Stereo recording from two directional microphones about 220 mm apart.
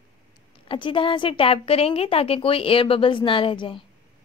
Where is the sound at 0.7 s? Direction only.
25° left (ahead or behind).